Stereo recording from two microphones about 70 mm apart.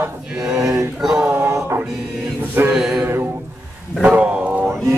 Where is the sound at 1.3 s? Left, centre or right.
Right.